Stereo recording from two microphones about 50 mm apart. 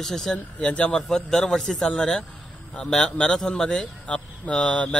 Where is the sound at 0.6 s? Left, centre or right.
Left.